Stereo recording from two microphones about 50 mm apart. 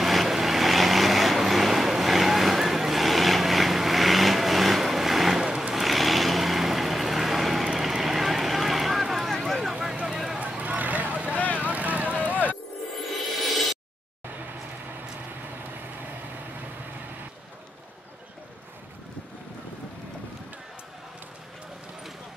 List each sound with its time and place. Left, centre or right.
0.0 s vehicle: centre
5.8 s vehicle: centre
10.0 s a sound: centre
10.6 s vehicle: right
11.3 s vehicle: left
11.6 s vehicle: right
12.3 s music: right
13.0 s music: centre